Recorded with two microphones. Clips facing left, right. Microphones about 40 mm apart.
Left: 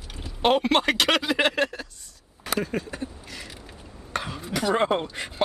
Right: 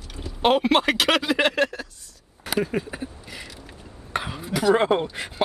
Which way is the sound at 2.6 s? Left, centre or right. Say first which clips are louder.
Right 5 dB; centre.